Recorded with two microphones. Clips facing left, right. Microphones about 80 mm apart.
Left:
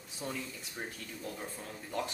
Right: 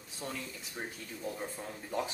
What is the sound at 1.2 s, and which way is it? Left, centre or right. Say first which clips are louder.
Speech: right 4 dB; centre.